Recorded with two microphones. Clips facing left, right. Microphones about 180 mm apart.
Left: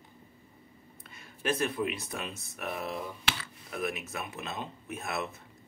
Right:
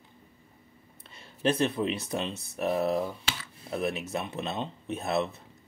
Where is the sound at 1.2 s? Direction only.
30° right (ahead or behind).